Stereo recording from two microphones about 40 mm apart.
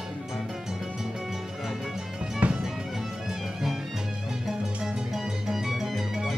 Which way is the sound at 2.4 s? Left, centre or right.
Right.